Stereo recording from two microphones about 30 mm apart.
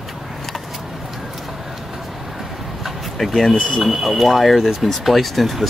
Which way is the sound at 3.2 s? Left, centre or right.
Centre.